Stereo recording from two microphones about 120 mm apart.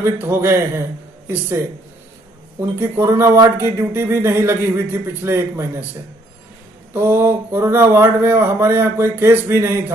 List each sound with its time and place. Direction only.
0.0 s speech: 20° right (ahead or behind)
2.8 s speech: 20° right (ahead or behind)
6.9 s speech: 20° right (ahead or behind)